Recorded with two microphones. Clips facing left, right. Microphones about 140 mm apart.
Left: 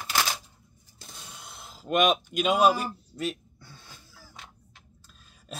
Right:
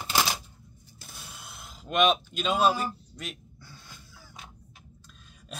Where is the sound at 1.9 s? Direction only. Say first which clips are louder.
Left 1 dB; 10° left (ahead or behind).